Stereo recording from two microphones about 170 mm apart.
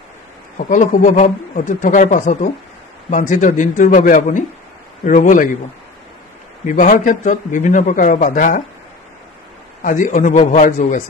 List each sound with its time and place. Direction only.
0.6 s a man's voice: 50° left (ahead or behind)
6.6 s a man's voice: 50° left (ahead or behind)
9.8 s a man's voice: 50° left (ahead or behind)